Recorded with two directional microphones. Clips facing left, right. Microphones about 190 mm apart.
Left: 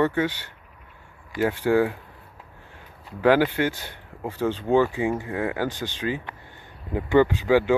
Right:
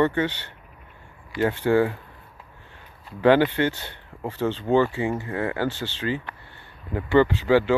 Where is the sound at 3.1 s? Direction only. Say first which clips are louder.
Right 1 dB; 5° left (ahead or behind).